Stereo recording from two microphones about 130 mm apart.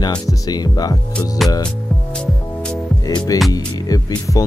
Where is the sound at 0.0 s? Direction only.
30° left (ahead or behind).